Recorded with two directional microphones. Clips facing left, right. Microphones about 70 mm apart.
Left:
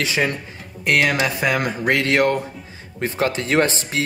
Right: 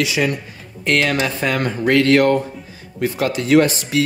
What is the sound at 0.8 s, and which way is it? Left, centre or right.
Speech, centre.